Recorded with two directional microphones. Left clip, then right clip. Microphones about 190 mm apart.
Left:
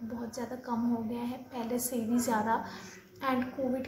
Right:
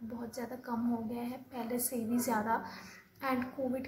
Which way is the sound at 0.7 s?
15° right (ahead or behind).